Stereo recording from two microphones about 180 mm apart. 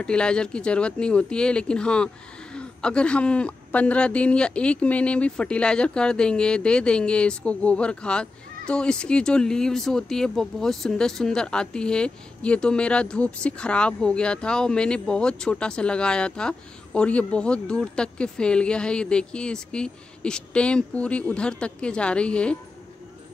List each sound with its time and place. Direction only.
0.0 s a woman's voice: 5° left (ahead or behind)